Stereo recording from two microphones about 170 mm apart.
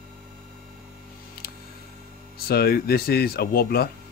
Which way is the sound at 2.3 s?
65° left (ahead or behind).